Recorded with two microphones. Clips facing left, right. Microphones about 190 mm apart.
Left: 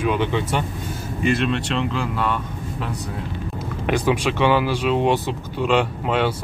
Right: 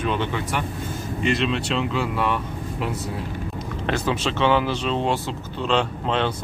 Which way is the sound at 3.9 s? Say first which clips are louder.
Left 4 dB; 15° left (ahead or behind).